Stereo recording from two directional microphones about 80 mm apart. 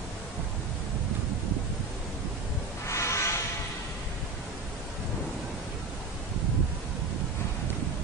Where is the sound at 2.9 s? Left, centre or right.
Left.